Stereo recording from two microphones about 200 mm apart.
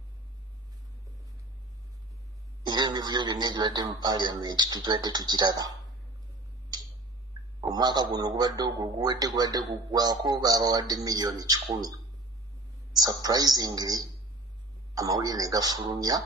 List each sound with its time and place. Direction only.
2.6 s a man's voice: 20° right (ahead or behind)
7.6 s a man's voice: 20° right (ahead or behind)
13.0 s a man's voice: 20° right (ahead or behind)